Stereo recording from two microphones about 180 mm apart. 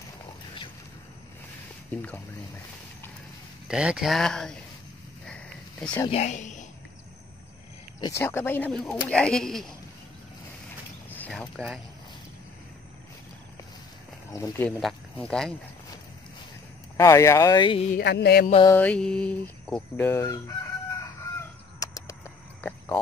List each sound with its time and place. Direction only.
3.6 s speech: 5° right (ahead or behind)
6.0 s speech: 35° left (ahead or behind)
8.0 s speech: 15° left (ahead or behind)
11.1 s speech: 5° left (ahead or behind)
14.3 s speech: 15° left (ahead or behind)
14.8 s speech: 5° left (ahead or behind)
16.9 s speech: 15° left (ahead or behind)
17.9 s a sound: 65° left (ahead or behind)
18.7 s speech: 10° left (ahead or behind)
21.0 s chicken: 20° left (ahead or behind)
22.6 s a sound: 10° left (ahead or behind)